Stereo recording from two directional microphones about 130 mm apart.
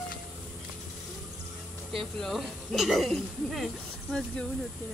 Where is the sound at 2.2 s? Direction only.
5° left (ahead or behind).